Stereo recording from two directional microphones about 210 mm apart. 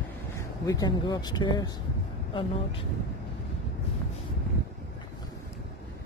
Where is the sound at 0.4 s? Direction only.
15° left (ahead or behind).